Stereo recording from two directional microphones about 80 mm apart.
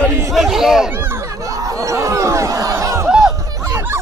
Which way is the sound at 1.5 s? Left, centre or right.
Right.